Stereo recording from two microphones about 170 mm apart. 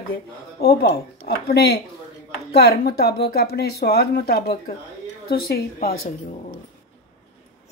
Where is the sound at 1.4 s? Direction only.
75° left (ahead or behind).